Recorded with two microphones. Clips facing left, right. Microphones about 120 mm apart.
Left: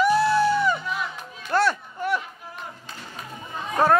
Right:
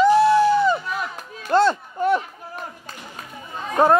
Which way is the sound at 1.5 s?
25° right (ahead or behind).